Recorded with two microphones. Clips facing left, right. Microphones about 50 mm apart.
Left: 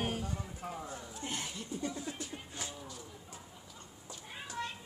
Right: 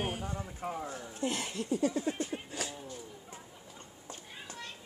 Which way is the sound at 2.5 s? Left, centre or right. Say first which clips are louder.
Right 5 dB; right.